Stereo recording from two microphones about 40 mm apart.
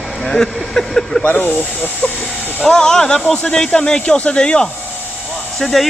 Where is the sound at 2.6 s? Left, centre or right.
Centre.